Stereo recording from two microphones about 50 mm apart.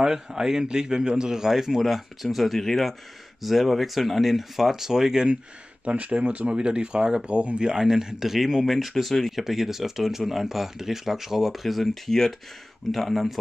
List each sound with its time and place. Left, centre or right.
0.0 s speech: centre
5.9 s speech: right; by 13.4 s centre